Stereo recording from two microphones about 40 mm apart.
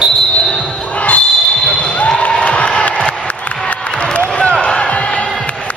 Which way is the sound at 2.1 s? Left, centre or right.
Left.